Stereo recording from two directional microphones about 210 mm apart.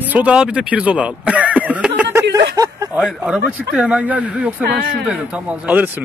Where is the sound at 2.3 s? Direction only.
15° right (ahead or behind).